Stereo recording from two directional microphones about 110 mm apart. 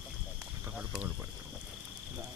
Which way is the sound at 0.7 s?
10° right (ahead or behind).